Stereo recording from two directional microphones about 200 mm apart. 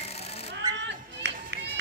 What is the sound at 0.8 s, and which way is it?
Music, 60° right (ahead or behind).